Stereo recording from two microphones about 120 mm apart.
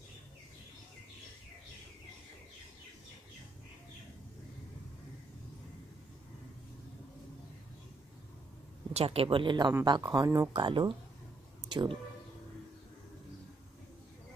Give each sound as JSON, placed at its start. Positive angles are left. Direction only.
{"t": 8.9, "sound": "speech", "side_deg": -55}
{"t": 10.5, "sound": "speech", "side_deg": -45}